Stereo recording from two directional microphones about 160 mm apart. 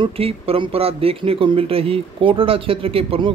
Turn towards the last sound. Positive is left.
turn(degrees=-35)  # may be behind; listen again after turning